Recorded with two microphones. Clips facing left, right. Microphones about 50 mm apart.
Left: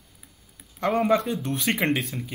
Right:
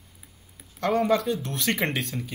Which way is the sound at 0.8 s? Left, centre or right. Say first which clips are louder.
Left 1 dB; centre.